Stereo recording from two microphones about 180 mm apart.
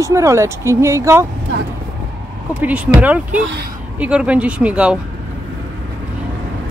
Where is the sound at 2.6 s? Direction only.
10° right (ahead or behind).